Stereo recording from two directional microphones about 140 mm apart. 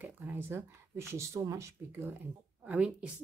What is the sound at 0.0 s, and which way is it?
Speech, 15° right (ahead or behind).